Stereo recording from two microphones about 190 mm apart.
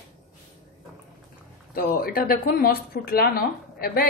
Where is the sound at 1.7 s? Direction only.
50° left (ahead or behind).